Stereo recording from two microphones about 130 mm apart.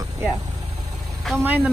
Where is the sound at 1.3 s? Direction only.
15° right (ahead or behind).